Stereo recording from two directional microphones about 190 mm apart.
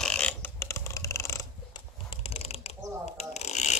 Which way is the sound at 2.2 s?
30° left (ahead or behind).